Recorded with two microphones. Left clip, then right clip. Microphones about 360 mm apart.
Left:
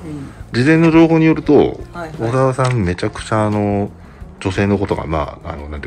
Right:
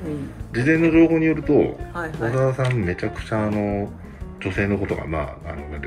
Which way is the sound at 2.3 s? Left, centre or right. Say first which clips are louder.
Left 7 dB; centre.